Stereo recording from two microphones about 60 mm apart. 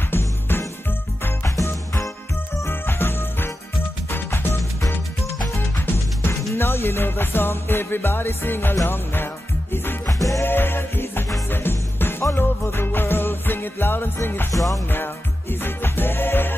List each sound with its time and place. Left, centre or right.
0.1 s music: left
1.4 s music: left
2.6 s music: left
6.5 s music: left
10.0 s music: left
10.4 s music: left
15.6 s music: left